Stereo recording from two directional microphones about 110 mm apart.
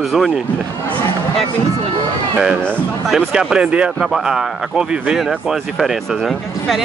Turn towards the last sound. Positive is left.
turn(degrees=0)  # may be behind; listen again after turning